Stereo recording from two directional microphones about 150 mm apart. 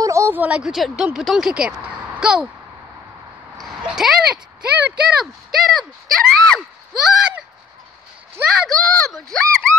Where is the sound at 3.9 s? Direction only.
5° right (ahead or behind).